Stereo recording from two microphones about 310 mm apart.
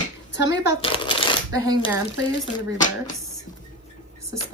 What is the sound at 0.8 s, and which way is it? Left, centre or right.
Speech, centre.